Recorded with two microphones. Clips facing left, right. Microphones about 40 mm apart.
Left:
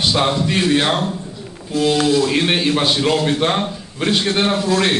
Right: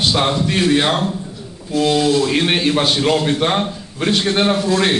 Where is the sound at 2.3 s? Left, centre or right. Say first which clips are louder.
Right 1 dB; centre.